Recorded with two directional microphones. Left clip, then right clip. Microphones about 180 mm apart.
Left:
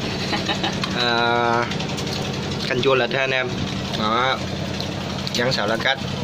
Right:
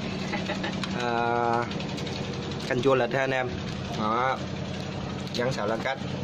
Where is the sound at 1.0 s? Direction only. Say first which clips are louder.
Left 7 dB; 10° right (ahead or behind).